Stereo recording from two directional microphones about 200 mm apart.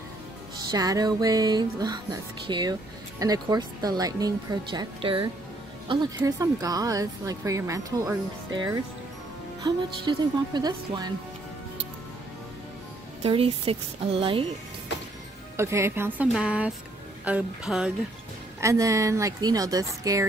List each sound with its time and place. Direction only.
0.7 s speech: 20° right (ahead or behind)
13.2 s speech: 30° right (ahead or behind)
15.5 s speech: 15° right (ahead or behind)
18.6 s speech: 15° right (ahead or behind)